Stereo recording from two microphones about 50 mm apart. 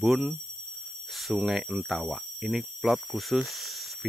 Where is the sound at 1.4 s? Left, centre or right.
Centre.